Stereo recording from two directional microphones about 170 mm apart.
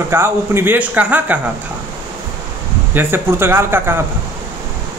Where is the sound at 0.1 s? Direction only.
15° right (ahead or behind).